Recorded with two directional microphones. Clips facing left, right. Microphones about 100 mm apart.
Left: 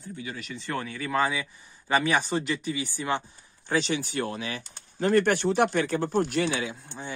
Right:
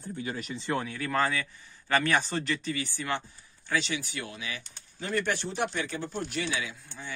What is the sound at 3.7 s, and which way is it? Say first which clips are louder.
Speech: left 4 dB; 35° left (ahead or behind).